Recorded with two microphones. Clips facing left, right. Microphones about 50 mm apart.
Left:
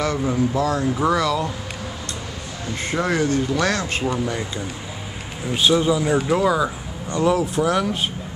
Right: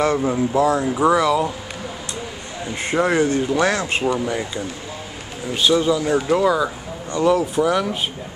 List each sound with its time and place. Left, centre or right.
0.2 s speech: centre
0.6 s a man's voice: right
0.9 s speech: centre
2.6 s a man's voice: right
4.0 s speech: centre
5.5 s speech: centre